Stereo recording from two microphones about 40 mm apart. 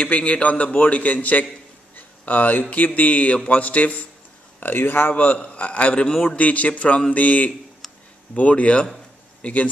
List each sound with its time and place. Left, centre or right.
0.0 s a man's voice: left
2.0 s a sound: left
2.7 s a man's voice: left
4.7 s speech: left
5.1 s a man's voice: left
5.4 s a man's voice: left
7.8 s a sound: centre
8.4 s a man's voice: left